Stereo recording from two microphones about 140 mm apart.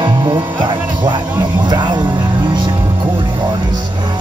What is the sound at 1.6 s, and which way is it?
Vehicle, 35° right (ahead or behind).